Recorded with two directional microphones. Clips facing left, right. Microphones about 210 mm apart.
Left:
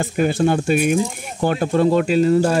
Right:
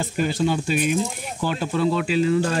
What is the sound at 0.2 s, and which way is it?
Speech, 55° left (ahead or behind).